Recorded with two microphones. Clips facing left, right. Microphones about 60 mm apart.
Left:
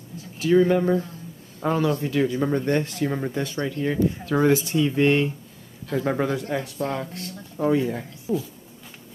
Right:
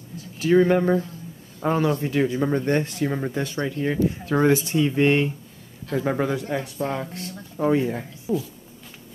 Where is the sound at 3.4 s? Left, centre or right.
Right.